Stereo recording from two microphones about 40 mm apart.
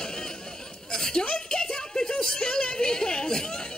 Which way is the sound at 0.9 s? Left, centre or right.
Centre.